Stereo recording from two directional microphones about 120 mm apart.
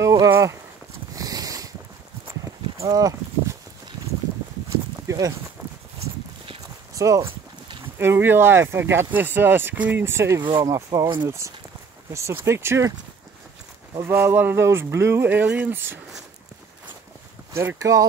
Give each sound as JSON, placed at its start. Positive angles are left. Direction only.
{"t": 0.0, "sound": "a sound", "side_deg": -30}
{"t": 0.3, "sound": "speech", "side_deg": -25}
{"t": 1.1, "sound": "a sound", "side_deg": -30}
{"t": 2.8, "sound": "speech", "side_deg": -30}
{"t": 5.0, "sound": "clip-clop", "side_deg": -30}
{"t": 7.0, "sound": "speech", "side_deg": -30}
{"t": 14.0, "sound": "speech", "side_deg": -20}
{"t": 17.6, "sound": "speech", "side_deg": -25}